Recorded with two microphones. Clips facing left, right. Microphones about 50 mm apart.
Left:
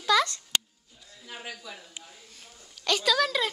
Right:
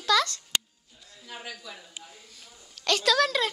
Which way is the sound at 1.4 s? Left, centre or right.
Centre.